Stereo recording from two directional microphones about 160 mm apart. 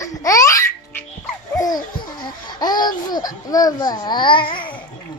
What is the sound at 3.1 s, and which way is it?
Babbling, 25° left (ahead or behind).